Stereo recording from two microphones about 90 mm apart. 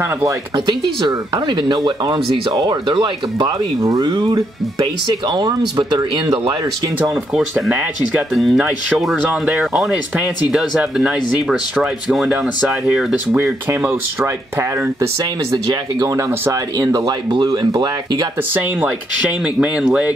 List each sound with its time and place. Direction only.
0.7 s speech: 55° right (ahead or behind)
8.4 s speech: centre (ahead or behind)
13.7 s speech: 25° right (ahead or behind)
15.5 s speech: 45° right (ahead or behind)
19.4 s speech: 15° right (ahead or behind)